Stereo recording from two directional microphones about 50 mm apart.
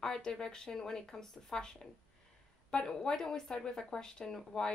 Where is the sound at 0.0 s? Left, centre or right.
Centre.